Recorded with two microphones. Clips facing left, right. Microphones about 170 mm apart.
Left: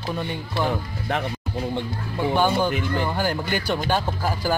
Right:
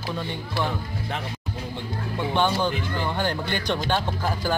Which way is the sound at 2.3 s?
10° left (ahead or behind).